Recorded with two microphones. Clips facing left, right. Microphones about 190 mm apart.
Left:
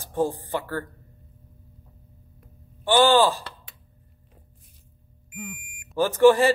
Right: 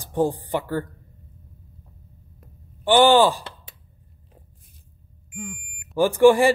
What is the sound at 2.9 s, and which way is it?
Speech, 15° right (ahead or behind).